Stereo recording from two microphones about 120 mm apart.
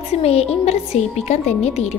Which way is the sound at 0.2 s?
60° left (ahead or behind).